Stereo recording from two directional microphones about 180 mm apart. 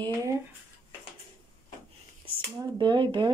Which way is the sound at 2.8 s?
25° right (ahead or behind).